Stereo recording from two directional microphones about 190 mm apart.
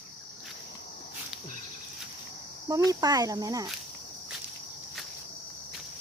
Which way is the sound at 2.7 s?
20° right (ahead or behind).